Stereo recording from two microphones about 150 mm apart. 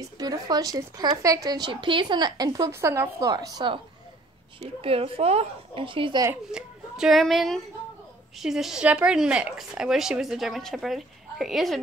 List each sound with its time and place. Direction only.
0.2 s speech: 25° right (ahead or behind)
4.8 s a woman's voice: 40° right (ahead or behind)
6.5 s speech: 5° right (ahead or behind)